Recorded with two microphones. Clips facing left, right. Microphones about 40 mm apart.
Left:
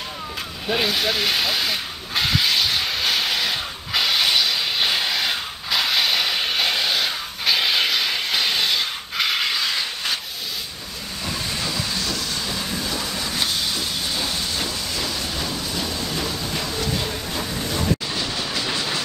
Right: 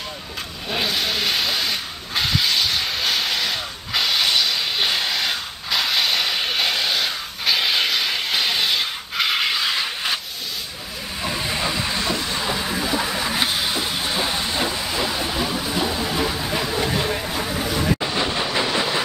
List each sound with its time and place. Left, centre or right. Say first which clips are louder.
0.7 s hiss: left 2 dB; centre
11.2 s train: right 3 dB; right
18.0 s train: right 4 dB; right